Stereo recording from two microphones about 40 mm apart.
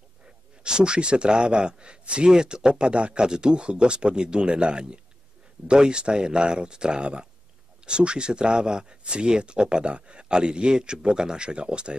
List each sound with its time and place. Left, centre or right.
0.7 s a man's voice: right